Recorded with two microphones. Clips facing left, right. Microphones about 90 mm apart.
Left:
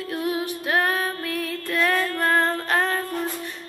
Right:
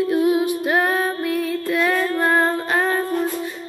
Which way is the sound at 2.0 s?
15° right (ahead or behind).